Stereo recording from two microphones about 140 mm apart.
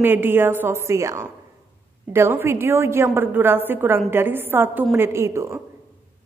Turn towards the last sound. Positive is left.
turn(degrees=-20)  # may be behind; listen again after turning